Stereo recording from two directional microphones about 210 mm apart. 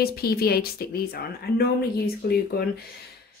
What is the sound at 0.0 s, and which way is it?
Speech, 45° left (ahead or behind).